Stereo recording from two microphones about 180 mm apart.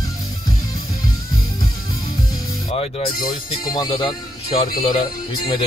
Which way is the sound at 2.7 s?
30° left (ahead or behind).